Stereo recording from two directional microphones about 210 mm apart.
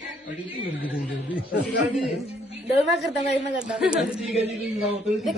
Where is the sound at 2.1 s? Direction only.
30° left (ahead or behind).